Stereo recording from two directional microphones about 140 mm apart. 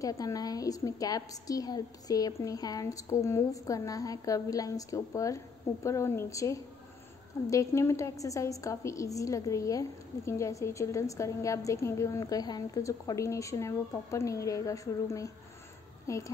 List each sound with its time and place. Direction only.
0.0 s a woman's voice: 25° left (ahead or behind)